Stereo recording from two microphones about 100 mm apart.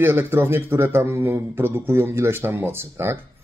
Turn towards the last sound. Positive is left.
turn(degrees=-25)  # may be behind; listen again after turning